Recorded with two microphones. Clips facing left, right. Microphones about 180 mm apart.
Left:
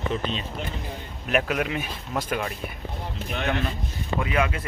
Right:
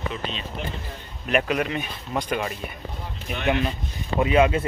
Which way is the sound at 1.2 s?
Centre (ahead or behind).